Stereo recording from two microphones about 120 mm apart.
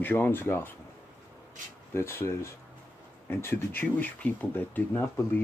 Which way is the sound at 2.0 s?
20° left (ahead or behind).